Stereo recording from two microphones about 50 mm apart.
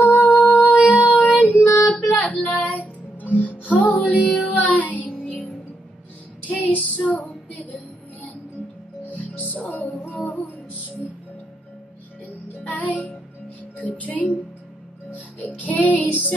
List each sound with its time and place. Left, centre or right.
0.0 s music: left
0.4 s music: centre
0.7 s music: right
1.4 s child singing: left
2.0 s music: left
2.4 s child singing: centre
2.7 s music: left
6.4 s female singing: left
9.0 s music: left
12.5 s music: left